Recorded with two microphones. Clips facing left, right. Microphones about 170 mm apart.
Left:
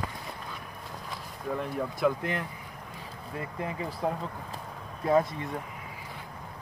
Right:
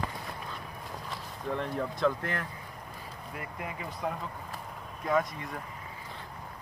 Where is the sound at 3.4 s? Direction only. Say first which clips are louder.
Left 6 dB; 30° left (ahead or behind).